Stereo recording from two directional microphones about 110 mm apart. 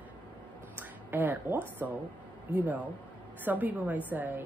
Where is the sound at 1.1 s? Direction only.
20° right (ahead or behind).